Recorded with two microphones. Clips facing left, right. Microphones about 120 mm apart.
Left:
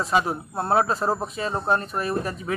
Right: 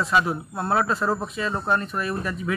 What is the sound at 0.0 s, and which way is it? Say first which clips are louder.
Speech: even; 40° left (ahead or behind).